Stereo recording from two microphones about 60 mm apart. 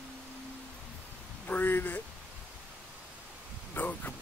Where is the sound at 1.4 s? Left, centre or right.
Left.